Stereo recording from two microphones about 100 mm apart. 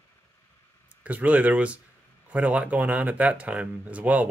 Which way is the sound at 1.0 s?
15° right (ahead or behind).